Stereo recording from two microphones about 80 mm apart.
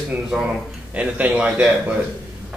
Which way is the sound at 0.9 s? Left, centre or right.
Centre.